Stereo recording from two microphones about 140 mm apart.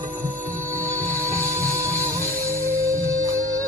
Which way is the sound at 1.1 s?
20° right (ahead or behind).